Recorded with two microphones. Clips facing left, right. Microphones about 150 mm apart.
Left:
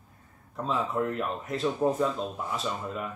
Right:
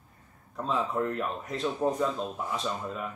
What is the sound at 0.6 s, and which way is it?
Speech, centre (ahead or behind).